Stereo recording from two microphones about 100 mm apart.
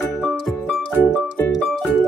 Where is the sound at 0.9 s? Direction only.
15° left (ahead or behind).